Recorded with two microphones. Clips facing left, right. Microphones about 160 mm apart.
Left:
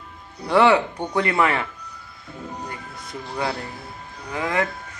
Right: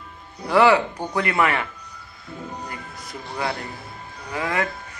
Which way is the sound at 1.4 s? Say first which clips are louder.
Right 1 dB; 30° left (ahead or behind).